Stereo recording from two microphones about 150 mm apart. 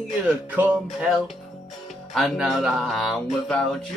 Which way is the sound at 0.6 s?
5° right (ahead or behind).